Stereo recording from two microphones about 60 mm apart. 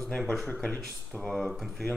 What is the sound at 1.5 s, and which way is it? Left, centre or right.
Speech, centre.